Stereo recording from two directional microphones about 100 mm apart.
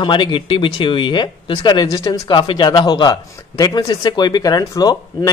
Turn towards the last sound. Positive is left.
turn(degrees=40)  # may be behind; listen again after turning